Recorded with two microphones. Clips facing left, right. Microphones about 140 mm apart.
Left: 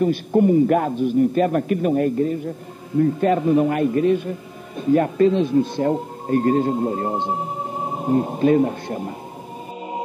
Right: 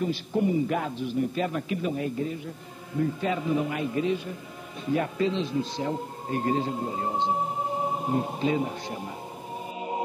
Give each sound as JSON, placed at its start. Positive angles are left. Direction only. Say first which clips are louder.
{"t": 0.0, "sound": "speech", "louder": "left 9 dB", "side_deg": 50}